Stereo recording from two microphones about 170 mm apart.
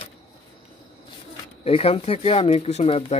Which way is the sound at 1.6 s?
35° left (ahead or behind).